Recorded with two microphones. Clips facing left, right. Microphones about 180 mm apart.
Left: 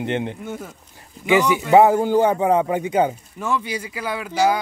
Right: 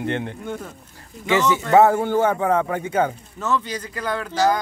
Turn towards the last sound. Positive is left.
turn(degrees=10)  # may be behind; listen again after turning